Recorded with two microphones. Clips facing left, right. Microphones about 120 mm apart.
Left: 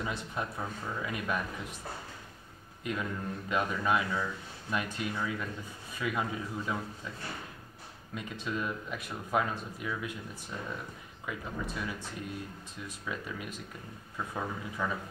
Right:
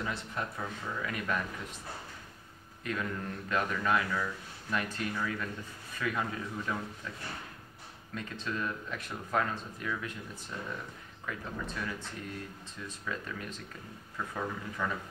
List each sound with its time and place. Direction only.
0.0 s speech: 15° left (ahead or behind)
2.8 s speech: 15° left (ahead or behind)
11.2 s speech: 10° left (ahead or behind)